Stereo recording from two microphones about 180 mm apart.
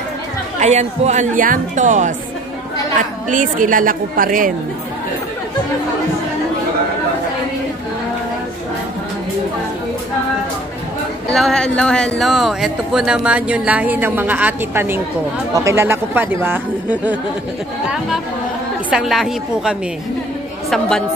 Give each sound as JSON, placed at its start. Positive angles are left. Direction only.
{"t": 0.6, "sound": "a woman's voice", "side_deg": -40}
{"t": 11.3, "sound": "speech", "side_deg": 0}
{"t": 18.9, "sound": "speech", "side_deg": -5}